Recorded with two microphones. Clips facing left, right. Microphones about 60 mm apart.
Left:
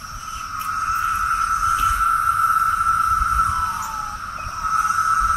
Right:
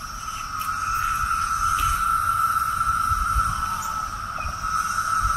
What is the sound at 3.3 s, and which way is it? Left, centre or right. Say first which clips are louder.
Music: left 4 dB; left.